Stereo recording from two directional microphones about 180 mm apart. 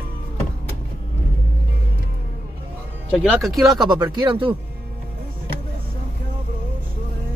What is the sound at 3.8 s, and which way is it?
Speech, 25° right (ahead or behind).